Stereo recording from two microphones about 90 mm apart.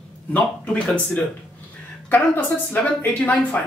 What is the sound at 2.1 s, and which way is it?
Speech, 20° left (ahead or behind).